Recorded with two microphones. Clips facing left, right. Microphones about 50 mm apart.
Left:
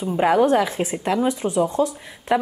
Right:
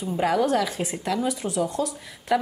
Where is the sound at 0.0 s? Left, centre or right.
Left.